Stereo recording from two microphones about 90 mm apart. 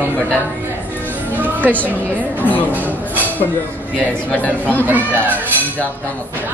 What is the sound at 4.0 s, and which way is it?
Speech, 15° left (ahead or behind).